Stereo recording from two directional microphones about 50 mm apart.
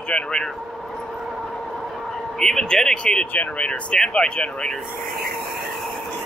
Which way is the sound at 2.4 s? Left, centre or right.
Centre.